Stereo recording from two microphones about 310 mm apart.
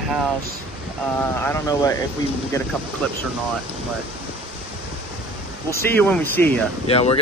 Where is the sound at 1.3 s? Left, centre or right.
Centre.